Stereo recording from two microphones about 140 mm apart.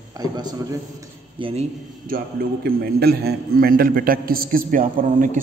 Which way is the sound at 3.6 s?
90° right.